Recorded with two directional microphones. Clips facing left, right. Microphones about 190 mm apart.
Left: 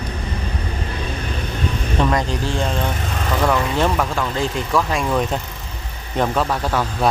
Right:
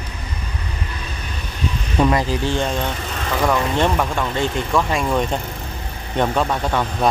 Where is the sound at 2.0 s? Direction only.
5° right (ahead or behind).